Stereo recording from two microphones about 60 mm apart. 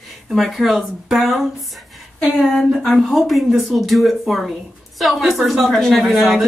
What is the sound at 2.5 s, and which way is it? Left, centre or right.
Speech, centre.